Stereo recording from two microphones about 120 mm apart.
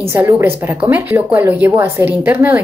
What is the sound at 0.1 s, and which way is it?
A woman's voice, 20° right (ahead or behind).